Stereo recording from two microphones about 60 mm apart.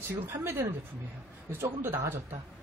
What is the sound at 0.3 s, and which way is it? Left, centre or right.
Speech, right.